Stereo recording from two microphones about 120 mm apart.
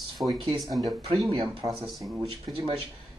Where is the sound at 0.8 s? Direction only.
35° right (ahead or behind).